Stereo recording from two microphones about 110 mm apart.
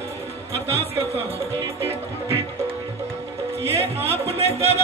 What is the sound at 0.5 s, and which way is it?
Music, 65° right (ahead or behind).